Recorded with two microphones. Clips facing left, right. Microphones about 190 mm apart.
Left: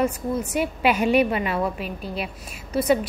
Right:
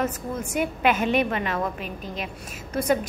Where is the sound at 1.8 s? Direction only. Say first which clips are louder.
Left 3 dB; 35° left (ahead or behind).